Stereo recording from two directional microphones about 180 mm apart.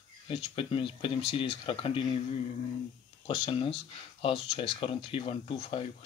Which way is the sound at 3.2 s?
30° left (ahead or behind).